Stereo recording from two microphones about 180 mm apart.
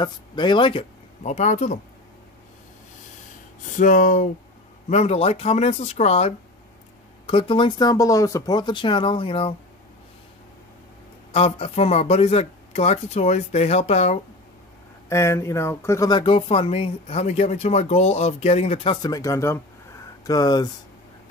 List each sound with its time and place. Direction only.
0.0 s speech: 25° left (ahead or behind)
1.3 s speech: 40° left (ahead or behind)
3.7 s speech: 45° left (ahead or behind)
11.3 s speech: 35° left (ahead or behind)
15.0 s speech: 15° left (ahead or behind); by 18.9 s 35° left (ahead or behind)
19.0 s speech: 20° left (ahead or behind)